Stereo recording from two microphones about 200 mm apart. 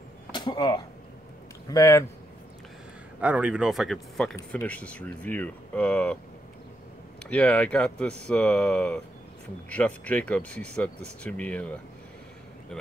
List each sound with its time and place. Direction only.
0.3 s arrow: 20° left (ahead or behind)
1.7 s speech: 15° left (ahead or behind)
3.2 s a man's voice: 5° right (ahead or behind)
7.2 s a man's voice: 5° left (ahead or behind)